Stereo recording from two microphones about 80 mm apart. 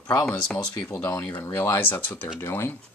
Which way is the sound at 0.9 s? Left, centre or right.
Left.